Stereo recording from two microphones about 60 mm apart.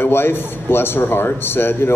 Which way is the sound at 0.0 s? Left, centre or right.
Left.